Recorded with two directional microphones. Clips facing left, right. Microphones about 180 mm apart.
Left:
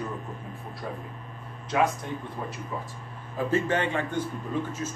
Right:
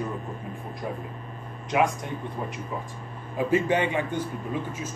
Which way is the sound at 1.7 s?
15° right (ahead or behind).